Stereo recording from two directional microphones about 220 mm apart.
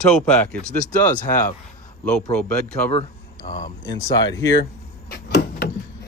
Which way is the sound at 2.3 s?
5° left (ahead or behind).